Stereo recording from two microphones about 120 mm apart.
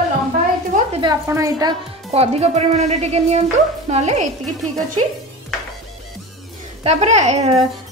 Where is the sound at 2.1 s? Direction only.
60° right (ahead or behind).